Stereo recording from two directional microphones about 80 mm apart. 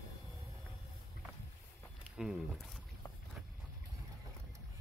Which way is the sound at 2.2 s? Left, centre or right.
Centre.